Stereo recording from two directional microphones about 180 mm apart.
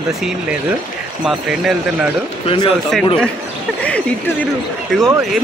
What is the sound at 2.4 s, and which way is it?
Speech, 25° left (ahead or behind).